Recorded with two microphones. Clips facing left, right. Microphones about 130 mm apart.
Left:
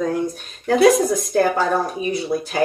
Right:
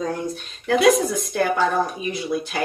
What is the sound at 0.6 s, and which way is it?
Speech, 40° left (ahead or behind).